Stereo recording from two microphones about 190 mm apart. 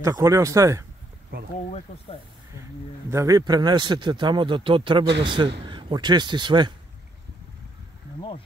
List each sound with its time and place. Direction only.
0.0 s speech: 15° right (ahead or behind)
2.5 s speech: 15° right (ahead or behind)